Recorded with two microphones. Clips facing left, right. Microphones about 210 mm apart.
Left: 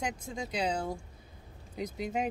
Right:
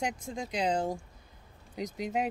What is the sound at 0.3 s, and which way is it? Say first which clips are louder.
Speech: right 1 dB; centre (ahead or behind).